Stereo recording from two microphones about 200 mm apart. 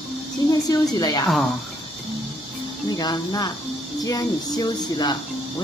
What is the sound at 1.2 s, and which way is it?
Speech, centre (ahead or behind).